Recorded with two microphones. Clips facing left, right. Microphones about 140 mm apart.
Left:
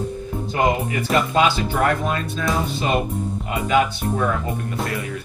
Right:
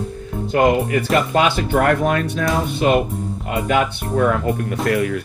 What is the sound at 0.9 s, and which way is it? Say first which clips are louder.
Speech: right 2 dB; 55° right (ahead or behind).